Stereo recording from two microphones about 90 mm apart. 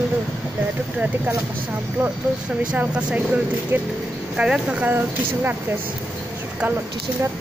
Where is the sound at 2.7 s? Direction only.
15° right (ahead or behind).